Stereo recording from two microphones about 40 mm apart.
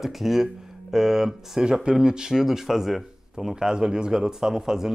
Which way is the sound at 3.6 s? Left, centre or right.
Centre.